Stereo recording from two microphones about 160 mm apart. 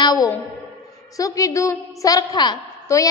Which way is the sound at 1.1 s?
20° left (ahead or behind).